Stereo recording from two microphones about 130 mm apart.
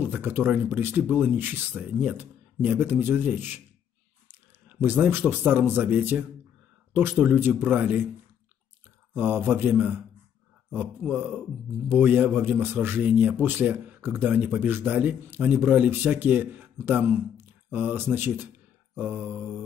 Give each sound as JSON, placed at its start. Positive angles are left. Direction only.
{"t": 0.0, "sound": "a man's voice", "side_deg": -15}
{"t": 9.1, "sound": "a man's voice", "side_deg": -15}